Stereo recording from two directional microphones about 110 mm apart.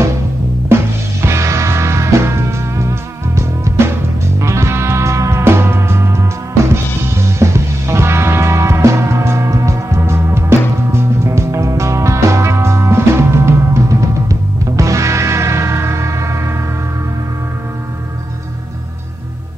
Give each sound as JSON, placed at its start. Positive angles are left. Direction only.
{"t": 0.7, "sound": "music", "side_deg": -20}